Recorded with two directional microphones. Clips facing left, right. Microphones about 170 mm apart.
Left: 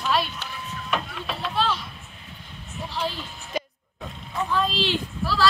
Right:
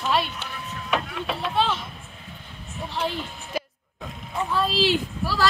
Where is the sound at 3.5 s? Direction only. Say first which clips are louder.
Even; 5° right (ahead or behind).